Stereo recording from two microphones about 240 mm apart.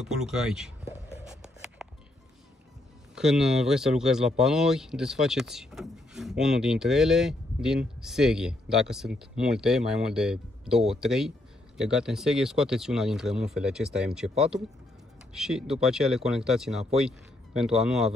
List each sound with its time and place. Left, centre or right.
0.0 s speech: centre
1.2 s a sound: centre
3.2 s speech: centre